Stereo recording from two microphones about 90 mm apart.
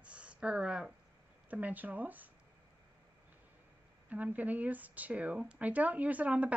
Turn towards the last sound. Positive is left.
turn(degrees=-15)  # may be behind; listen again after turning